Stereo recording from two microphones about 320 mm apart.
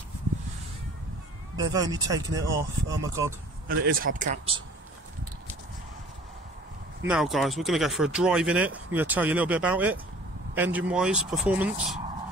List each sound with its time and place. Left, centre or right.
1.6 s speech: centre
3.6 s speech: right
7.1 s speech: centre